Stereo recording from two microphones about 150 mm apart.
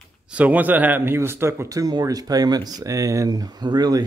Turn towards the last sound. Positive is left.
turn(degrees=-25)  # may be behind; listen again after turning